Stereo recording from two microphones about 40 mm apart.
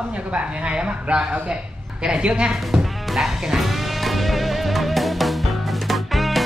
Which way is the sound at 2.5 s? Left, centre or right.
Centre.